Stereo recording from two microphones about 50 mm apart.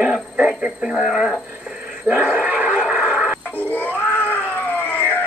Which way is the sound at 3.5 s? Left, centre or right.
Left.